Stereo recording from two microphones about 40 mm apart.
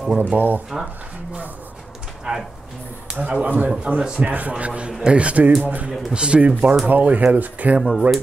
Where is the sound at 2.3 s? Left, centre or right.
Centre.